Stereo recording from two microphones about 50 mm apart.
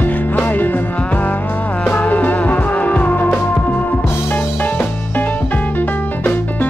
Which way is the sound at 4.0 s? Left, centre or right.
Left.